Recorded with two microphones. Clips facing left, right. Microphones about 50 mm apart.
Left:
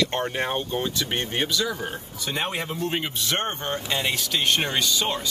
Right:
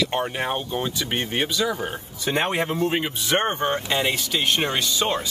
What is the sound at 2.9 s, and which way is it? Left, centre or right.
Speech, centre.